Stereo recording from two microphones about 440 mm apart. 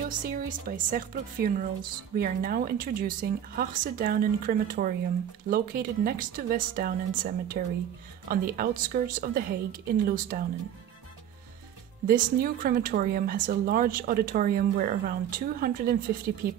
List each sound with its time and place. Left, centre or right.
0.0 s speech: centre
12.1 s speech: centre